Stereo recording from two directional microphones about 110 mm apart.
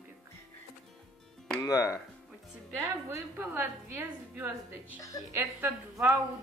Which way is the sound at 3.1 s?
25° right (ahead or behind).